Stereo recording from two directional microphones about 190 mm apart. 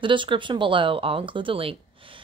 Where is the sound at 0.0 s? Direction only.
25° right (ahead or behind).